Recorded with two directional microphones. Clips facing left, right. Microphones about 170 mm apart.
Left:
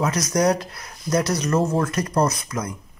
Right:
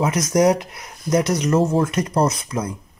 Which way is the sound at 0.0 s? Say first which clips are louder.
Right 3 dB; 25° right (ahead or behind).